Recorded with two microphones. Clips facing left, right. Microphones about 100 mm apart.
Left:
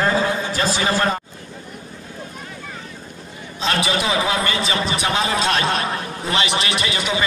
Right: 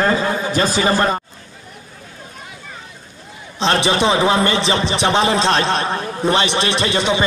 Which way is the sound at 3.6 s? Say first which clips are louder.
Right 5 dB; 30° right (ahead or behind).